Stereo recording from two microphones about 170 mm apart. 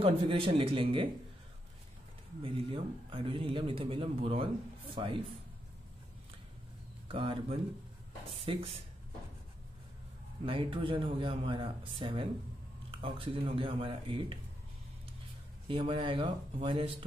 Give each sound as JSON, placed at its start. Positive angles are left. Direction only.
{"t": 0.0, "sound": "speech", "side_deg": -30}
{"t": 2.4, "sound": "speech", "side_deg": -30}
{"t": 7.1, "sound": "speech", "side_deg": -30}
{"t": 10.4, "sound": "speech", "side_deg": -30}
{"t": 15.7, "sound": "speech", "side_deg": -30}